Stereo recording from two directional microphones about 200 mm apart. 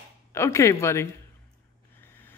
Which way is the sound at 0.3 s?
15° left (ahead or behind).